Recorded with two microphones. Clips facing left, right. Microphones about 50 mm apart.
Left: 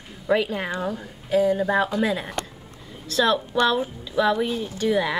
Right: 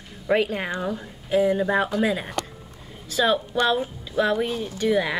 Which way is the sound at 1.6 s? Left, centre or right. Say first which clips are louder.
Even; centre.